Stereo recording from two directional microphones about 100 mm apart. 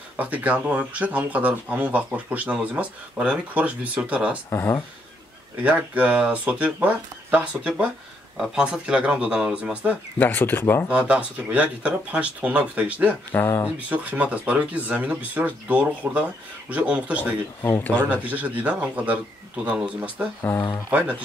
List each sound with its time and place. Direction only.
0.2 s speech: 15° right (ahead or behind)
4.5 s speech: 25° left (ahead or behind)
5.6 s speech: 15° right (ahead or behind)
10.1 s speech: 20° left (ahead or behind)
10.9 s speech: 10° right (ahead or behind)
13.3 s speech: 20° left (ahead or behind)
13.7 s speech: 15° right (ahead or behind)
17.6 s speech: 25° left (ahead or behind)
18.1 s speech: 15° right (ahead or behind)